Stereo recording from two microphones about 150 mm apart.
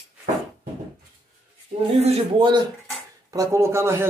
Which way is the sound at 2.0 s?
40° right (ahead or behind).